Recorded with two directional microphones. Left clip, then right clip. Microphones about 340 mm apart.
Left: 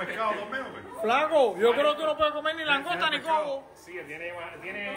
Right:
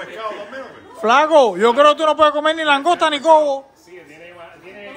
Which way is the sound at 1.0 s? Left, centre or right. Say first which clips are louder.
Right 11 dB; right.